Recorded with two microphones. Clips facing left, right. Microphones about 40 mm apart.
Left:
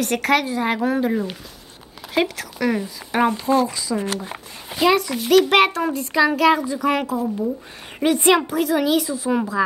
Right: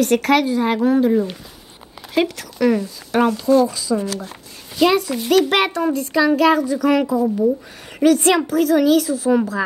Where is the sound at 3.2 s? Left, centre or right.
Left.